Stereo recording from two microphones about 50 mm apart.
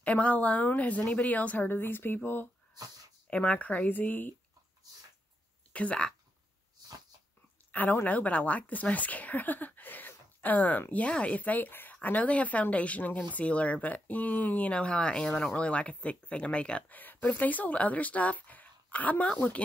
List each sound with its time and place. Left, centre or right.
0.0 s speech: left
1.7 s speech: left
3.3 s speech: left
3.5 s a woman's voice: left
5.7 s speech: left
7.7 s speech: left; by 15.5 s centre
15.5 s speech: left
16.9 s speech: left